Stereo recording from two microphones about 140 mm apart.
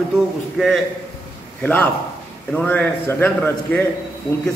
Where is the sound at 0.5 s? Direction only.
Centre (ahead or behind).